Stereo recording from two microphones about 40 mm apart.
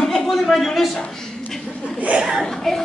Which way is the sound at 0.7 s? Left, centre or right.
Centre.